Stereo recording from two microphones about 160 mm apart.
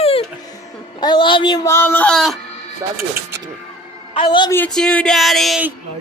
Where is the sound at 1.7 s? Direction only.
15° left (ahead or behind).